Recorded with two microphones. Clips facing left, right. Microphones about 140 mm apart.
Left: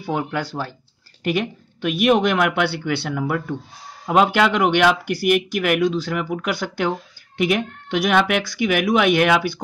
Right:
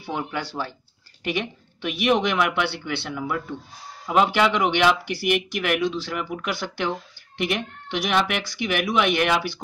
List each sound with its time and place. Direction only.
0.0 s speech: 50° left (ahead or behind)